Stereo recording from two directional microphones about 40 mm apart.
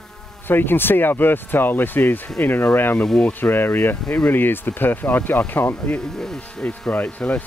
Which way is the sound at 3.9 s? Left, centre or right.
Left.